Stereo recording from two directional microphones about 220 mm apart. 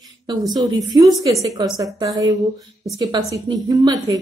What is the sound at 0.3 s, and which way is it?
Speech, 20° right (ahead or behind).